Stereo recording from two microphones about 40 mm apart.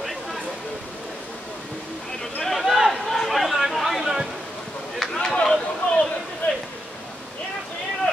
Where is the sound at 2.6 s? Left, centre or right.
Centre.